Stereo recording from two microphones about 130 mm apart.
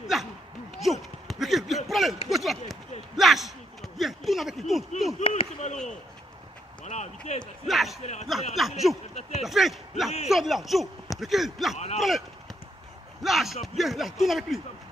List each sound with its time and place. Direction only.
0.1 s a sound: centre (ahead or behind)
5.2 s a sound: 50° left (ahead or behind)
6.8 s speech: 60° left (ahead or behind)
7.6 s a man's voice: centre (ahead or behind)
8.0 s speech: 60° left (ahead or behind)
8.5 s a man's voice: centre (ahead or behind)